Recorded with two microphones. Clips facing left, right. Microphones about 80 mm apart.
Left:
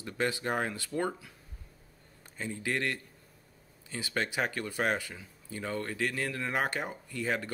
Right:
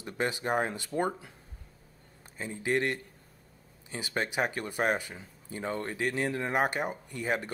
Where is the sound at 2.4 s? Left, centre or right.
Right.